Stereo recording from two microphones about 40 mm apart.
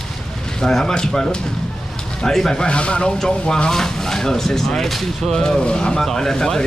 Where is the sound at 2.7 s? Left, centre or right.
Left.